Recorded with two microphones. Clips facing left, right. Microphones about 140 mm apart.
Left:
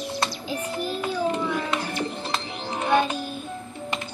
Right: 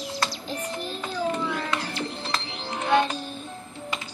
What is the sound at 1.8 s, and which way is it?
Music, 50° left (ahead or behind).